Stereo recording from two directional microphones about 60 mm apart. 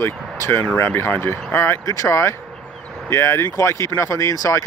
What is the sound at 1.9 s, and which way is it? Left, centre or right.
Speech, left.